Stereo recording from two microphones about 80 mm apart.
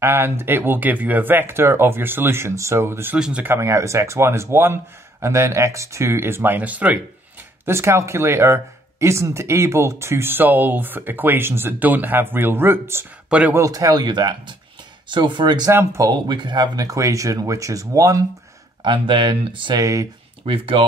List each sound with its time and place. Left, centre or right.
0.0 s speech: right
3.2 s speech: centre
3.4 s speech: right; by 7.0 s centre
7.6 s speech: right
13.3 s speech: centre
13.6 s speech: right
15.0 s speech: right
15.7 s speech: right
16.1 s speech: right
16.7 s speech: right
18.8 s speech: right
19.8 s speech: right